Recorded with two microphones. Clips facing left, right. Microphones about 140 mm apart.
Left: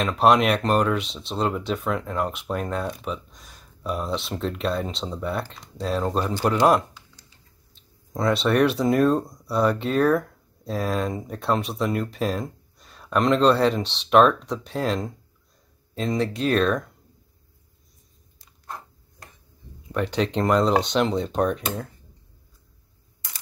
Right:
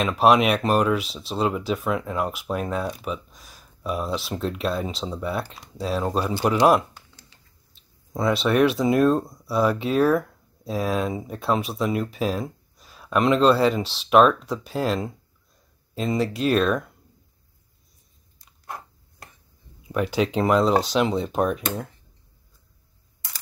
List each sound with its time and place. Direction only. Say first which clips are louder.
0.0 s speech: right 1 dB; 5° right (ahead or behind)
6.9 s a sound: right 1 dB; 60° right (ahead or behind)
7.7 s speech: right 1 dB; centre (ahead or behind)
19.9 s speech: right 1 dB; 5° right (ahead or behind)